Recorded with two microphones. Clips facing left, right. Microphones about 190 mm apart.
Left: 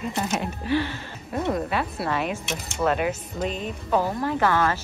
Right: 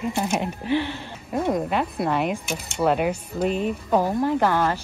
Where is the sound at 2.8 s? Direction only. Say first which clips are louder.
Right 2 dB; 10° right (ahead or behind).